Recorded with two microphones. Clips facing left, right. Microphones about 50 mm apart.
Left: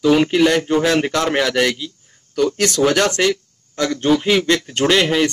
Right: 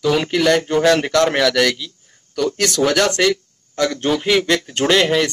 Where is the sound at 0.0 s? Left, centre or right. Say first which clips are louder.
Left 4 dB; centre.